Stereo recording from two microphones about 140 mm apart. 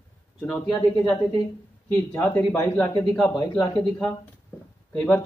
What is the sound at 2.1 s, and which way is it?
Speech, 15° left (ahead or behind).